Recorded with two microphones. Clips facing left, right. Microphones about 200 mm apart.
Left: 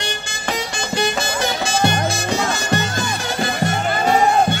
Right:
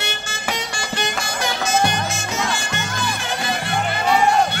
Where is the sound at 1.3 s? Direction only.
30° left (ahead or behind); by 4.2 s 45° left (ahead or behind).